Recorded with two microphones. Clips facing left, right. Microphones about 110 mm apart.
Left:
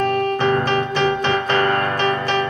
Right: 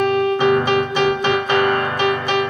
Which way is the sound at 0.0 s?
15° right (ahead or behind).